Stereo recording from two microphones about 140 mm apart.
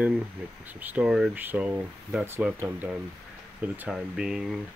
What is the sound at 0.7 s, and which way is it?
Speech, 10° right (ahead or behind).